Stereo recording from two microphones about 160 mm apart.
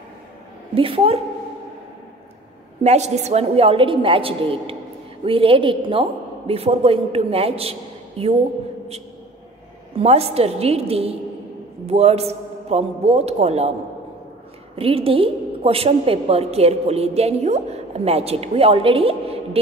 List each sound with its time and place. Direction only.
0.7 s a woman's voice: 35° right (ahead or behind)
2.8 s a woman's voice: 45° right (ahead or behind)
9.9 s a woman's voice: 40° right (ahead or behind)
14.8 s a woman's voice: 35° right (ahead or behind)